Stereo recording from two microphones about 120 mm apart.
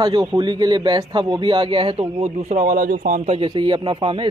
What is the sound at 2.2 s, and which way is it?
A man's voice, 85° right.